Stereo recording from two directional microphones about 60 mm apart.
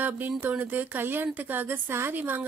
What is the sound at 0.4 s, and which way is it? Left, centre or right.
A woman's voice, right.